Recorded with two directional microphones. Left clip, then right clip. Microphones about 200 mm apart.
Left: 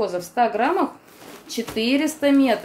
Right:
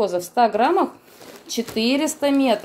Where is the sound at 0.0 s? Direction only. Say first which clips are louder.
Right 2 dB; 40° right (ahead or behind).